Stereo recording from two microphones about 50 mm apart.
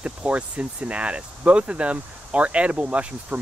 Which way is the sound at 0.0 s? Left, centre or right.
Right.